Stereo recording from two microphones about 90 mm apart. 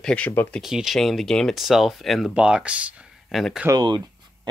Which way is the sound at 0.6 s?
5° right (ahead or behind).